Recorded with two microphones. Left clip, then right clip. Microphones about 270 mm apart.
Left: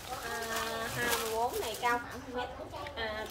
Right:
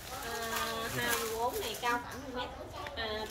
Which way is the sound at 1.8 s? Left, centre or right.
Centre.